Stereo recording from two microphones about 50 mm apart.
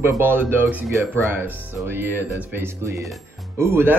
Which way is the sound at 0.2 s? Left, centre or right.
Right.